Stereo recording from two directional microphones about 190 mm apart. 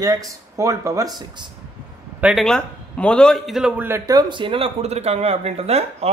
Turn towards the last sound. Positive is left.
turn(degrees=-35)  # may be behind; listen again after turning